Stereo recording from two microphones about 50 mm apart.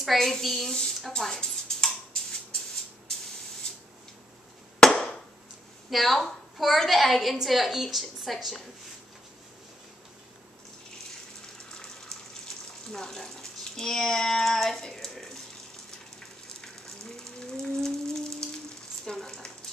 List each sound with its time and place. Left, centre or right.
0.0 s a woman's voice: centre
1.1 s dishes: centre
4.8 s hammer: centre
5.9 s a woman's voice: centre
12.4 s a sound: centre
16.6 s a sound: centre